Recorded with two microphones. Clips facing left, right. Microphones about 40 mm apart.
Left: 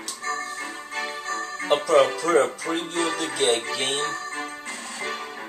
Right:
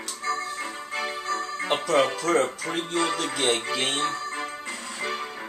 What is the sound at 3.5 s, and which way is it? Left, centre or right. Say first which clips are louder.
Music: even; centre.